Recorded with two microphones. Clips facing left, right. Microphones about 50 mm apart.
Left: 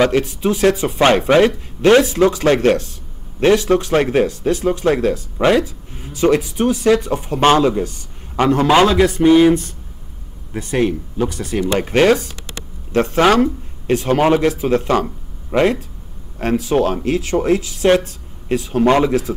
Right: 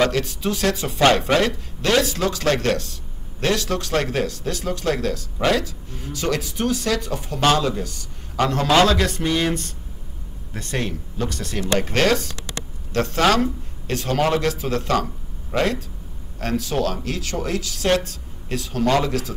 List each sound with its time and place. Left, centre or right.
0.0 s speech: left